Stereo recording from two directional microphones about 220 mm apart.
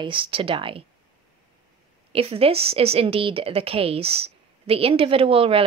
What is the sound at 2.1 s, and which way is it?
Speech, 25° right (ahead or behind).